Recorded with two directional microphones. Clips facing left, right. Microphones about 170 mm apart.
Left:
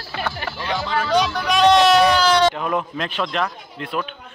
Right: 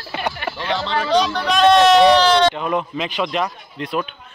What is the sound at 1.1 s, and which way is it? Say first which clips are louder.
Speech: right 1 dB; 10° left (ahead or behind).